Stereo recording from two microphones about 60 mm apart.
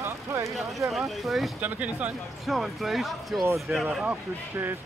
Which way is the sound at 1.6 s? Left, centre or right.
Right.